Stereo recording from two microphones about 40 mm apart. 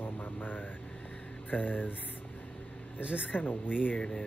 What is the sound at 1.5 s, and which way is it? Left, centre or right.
Speech, left.